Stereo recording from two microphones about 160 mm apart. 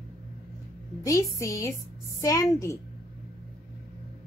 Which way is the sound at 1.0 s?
20° left (ahead or behind).